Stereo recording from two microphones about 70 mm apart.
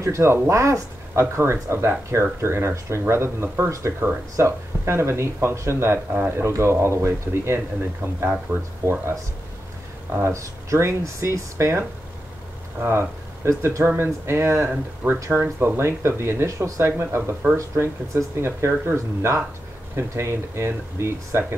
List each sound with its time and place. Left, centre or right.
0.0 s speech: right
6.1 s speech: right
6.4 s speech: right
10.3 s speech: right
12.8 s speech: right
17.0 s speech: right